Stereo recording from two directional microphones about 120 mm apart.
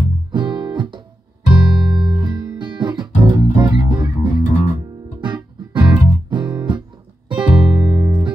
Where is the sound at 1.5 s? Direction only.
40° right (ahead or behind).